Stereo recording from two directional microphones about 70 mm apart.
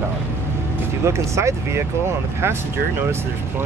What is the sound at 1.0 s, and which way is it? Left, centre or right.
Speech, right.